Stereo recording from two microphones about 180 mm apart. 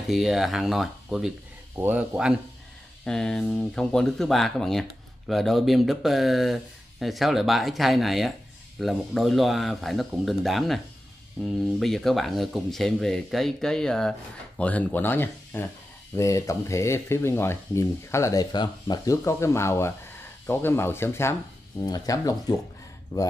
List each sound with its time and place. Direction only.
0.1 s speech: centre (ahead or behind); by 23.3 s 25° left (ahead or behind)